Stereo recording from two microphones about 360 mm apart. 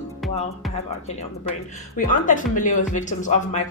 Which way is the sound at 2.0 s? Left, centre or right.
Left.